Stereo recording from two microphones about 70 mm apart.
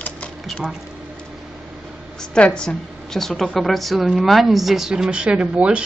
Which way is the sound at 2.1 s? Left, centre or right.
Centre.